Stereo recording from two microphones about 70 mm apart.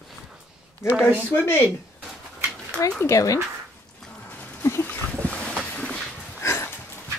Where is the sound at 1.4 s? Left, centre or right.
Left.